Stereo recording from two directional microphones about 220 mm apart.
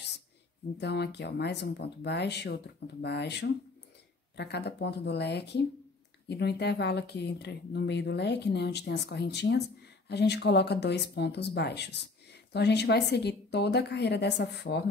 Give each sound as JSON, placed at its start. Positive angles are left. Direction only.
{"t": 0.7, "sound": "speech", "side_deg": 50}